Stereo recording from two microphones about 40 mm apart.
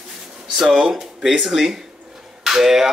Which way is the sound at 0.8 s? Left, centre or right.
Centre.